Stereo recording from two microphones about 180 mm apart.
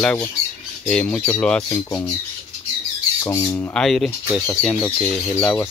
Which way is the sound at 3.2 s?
15° left (ahead or behind).